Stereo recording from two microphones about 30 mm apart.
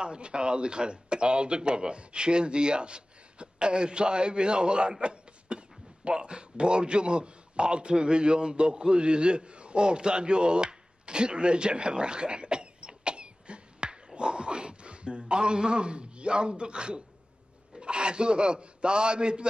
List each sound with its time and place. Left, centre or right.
0.0 s a man's voice: right
14.1 s dog: right
17.7 s a man's voice: right